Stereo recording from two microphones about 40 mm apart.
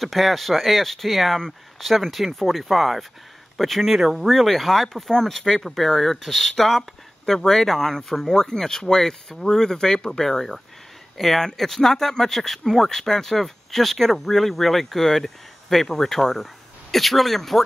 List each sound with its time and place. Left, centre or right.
0.0 s speech: centre